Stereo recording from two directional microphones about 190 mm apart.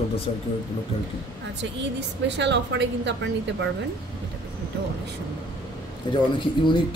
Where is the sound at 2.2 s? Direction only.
65° right (ahead or behind).